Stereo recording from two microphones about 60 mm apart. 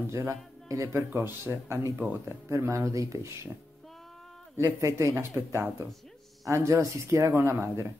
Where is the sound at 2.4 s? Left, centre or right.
Right.